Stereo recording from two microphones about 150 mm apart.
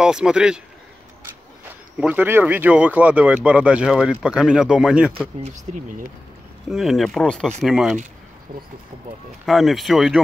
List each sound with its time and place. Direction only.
0.0 s speech: 5° right (ahead or behind)
2.0 s speech: 10° right (ahead or behind)
5.4 s speech: 55° right (ahead or behind)
6.7 s speech: centre (ahead or behind)
9.5 s speech: centre (ahead or behind)